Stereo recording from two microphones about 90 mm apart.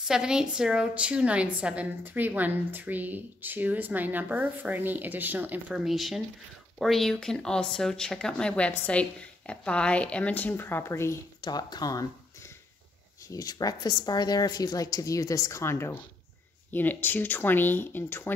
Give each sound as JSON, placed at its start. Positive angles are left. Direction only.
{"t": 0.0, "sound": "a woman's voice", "side_deg": -5}
{"t": 5.8, "sound": "speech", "side_deg": 0}
{"t": 11.4, "sound": "a woman's voice", "side_deg": 50}